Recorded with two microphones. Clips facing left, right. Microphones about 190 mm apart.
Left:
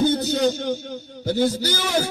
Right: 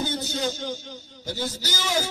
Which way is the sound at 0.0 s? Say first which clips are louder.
Left 9 dB; 60° left (ahead or behind).